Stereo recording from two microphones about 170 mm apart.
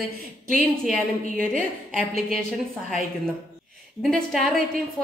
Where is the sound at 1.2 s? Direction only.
50° right (ahead or behind).